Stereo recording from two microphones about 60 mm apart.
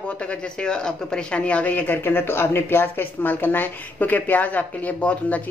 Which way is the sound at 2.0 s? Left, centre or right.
Left.